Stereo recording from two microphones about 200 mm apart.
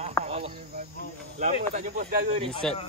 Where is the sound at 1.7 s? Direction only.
40° right (ahead or behind).